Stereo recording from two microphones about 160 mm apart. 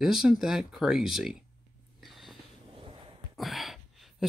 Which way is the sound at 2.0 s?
Centre (ahead or behind).